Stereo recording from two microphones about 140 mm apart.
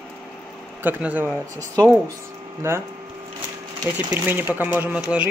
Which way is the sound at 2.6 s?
15° right (ahead or behind).